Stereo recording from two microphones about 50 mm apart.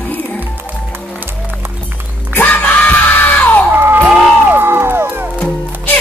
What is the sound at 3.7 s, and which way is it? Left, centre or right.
Music, right.